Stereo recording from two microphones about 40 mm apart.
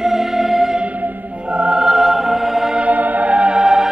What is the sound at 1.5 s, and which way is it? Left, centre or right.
Music, right.